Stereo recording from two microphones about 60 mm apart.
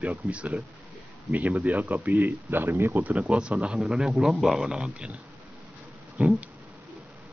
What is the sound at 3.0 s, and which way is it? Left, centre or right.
Speech, right.